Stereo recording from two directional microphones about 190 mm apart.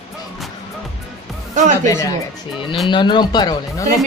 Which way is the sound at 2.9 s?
25° left (ahead or behind).